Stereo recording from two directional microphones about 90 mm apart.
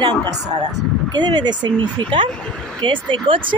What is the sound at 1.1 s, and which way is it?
Speech, 55° right (ahead or behind).